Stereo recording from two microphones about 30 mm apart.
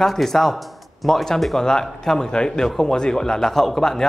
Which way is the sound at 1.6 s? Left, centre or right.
Centre.